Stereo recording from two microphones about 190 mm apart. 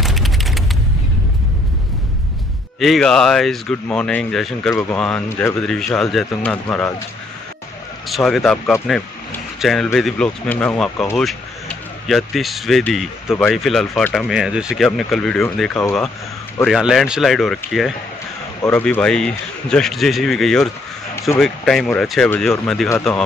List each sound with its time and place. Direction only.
0.0 s a sound: centre (ahead or behind)
2.8 s speech: centre (ahead or behind)
8.1 s speech: centre (ahead or behind)
12.1 s speech: centre (ahead or behind)